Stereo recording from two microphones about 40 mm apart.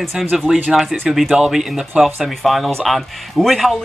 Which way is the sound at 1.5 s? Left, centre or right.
Centre.